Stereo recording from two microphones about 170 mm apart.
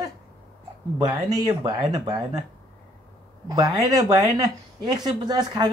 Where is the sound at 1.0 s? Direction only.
25° right (ahead or behind).